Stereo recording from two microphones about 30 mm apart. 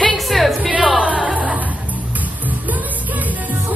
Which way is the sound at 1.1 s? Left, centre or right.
Right.